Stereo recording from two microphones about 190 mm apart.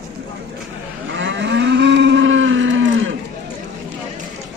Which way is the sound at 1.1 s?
75° right (ahead or behind).